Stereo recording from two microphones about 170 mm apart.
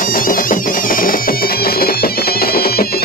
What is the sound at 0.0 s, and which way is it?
Music, 55° left (ahead or behind).